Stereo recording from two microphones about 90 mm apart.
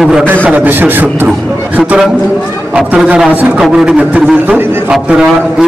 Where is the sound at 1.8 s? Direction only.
10° right (ahead or behind).